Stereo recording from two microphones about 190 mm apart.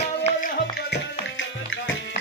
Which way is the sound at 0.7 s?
65° left (ahead or behind).